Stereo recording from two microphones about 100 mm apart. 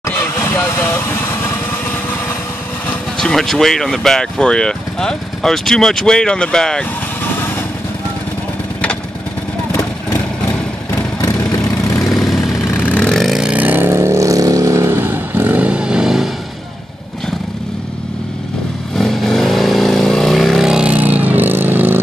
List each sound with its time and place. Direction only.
0.1 s vehicle: 25° left (ahead or behind)
3.2 s speech: 5° left (ahead or behind)
9.7 s vehicle: 35° left (ahead or behind)
11.1 s vehicle: 40° left (ahead or behind)
12.1 s vehicle: centre (ahead or behind)
12.7 s vehicle: 15° left (ahead or behind); by 16.3 s 5° right (ahead or behind)
18.9 s vehicle: centre (ahead or behind); by 22.0 s 20° right (ahead or behind)